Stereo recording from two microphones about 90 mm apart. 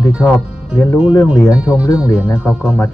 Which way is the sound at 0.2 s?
25° left (ahead or behind).